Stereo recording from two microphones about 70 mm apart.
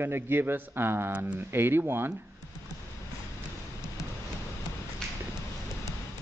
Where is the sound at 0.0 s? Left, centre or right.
Right.